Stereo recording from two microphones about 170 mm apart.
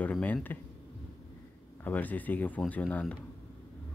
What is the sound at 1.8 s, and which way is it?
Speech, 10° left (ahead or behind).